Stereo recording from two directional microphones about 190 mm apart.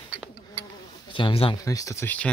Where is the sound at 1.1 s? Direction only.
30° left (ahead or behind).